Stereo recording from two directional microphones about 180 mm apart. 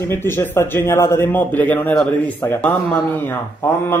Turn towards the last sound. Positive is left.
turn(degrees=10)  # may be behind; listen again after turning